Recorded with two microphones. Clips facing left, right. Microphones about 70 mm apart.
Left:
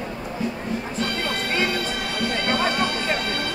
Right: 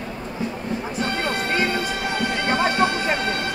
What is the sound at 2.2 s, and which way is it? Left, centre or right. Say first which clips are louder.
Music: right 1 dB; right.